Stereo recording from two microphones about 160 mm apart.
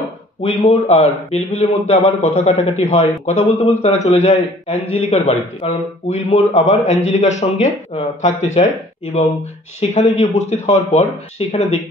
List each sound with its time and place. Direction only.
0.4 s a man's voice: 40° left (ahead or behind)